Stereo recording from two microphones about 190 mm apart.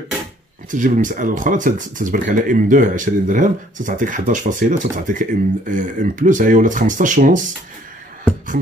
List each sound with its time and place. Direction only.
0.7 s speech: 40° right (ahead or behind)